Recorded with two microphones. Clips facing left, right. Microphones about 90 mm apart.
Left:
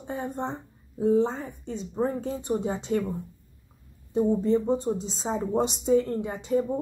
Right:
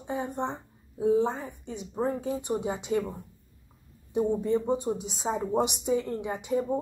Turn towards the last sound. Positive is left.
turn(degrees=-15)  # may be behind; listen again after turning